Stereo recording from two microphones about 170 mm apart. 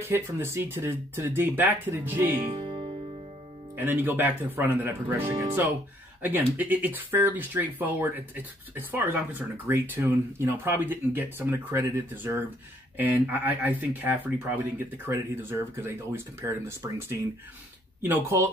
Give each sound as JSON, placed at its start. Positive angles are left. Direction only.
{"t": 0.0, "sound": "speech", "side_deg": -15}
{"t": 2.5, "sound": "music", "side_deg": -35}
{"t": 3.7, "sound": "speech", "side_deg": -10}